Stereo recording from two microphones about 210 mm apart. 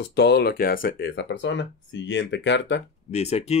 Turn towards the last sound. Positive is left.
turn(degrees=30)  # may be behind; listen again after turning